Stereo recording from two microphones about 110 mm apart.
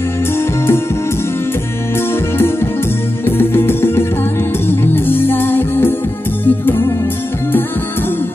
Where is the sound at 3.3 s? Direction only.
20° left (ahead or behind).